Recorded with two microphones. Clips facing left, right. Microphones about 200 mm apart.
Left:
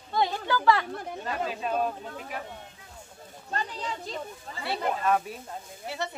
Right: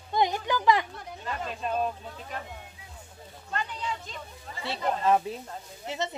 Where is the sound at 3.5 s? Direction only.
35° left (ahead or behind).